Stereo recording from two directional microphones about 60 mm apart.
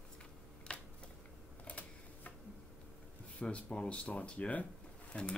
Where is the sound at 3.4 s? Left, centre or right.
Left.